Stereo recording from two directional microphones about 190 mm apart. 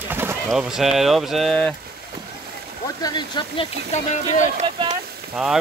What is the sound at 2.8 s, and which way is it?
Speech, 20° left (ahead or behind).